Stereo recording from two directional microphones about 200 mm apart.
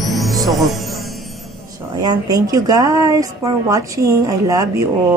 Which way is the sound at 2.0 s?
20° right (ahead or behind).